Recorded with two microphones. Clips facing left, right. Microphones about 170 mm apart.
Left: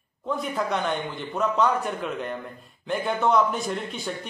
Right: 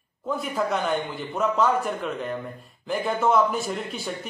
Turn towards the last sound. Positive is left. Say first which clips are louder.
# right 1 dB
turn(degrees=-5)  # may be behind; listen again after turning